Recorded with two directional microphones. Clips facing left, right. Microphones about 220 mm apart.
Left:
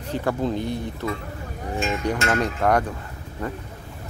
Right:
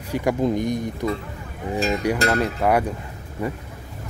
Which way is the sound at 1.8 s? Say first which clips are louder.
Right 3 dB; 35° right (ahead or behind).